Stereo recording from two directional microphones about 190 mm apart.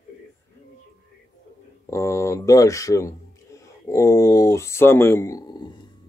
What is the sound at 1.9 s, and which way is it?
Speech, 15° left (ahead or behind).